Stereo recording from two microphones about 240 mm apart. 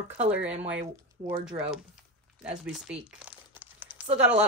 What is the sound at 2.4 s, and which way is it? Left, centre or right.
Crumpling, centre.